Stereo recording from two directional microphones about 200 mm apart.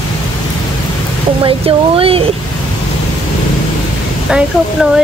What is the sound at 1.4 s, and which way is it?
Speech, 25° right (ahead or behind).